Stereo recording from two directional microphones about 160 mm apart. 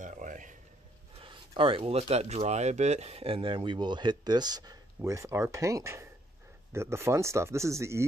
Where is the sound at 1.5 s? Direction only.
35° right (ahead or behind).